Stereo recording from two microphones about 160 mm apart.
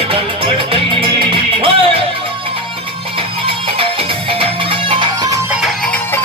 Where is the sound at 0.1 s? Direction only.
35° right (ahead or behind).